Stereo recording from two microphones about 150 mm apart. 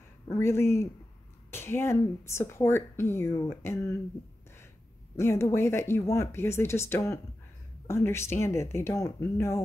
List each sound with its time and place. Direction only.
0.3 s speech: 15° left (ahead or behind)
5.1 s speech: 20° left (ahead or behind)